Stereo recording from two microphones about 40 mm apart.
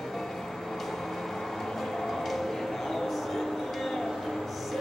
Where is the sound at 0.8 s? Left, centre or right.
Centre.